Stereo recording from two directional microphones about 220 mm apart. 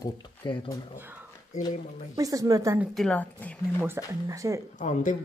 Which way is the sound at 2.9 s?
5° left (ahead or behind).